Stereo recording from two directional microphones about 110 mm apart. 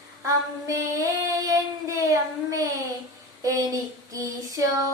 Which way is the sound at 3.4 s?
30° right (ahead or behind).